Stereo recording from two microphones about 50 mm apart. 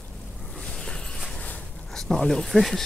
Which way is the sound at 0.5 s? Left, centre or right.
Centre.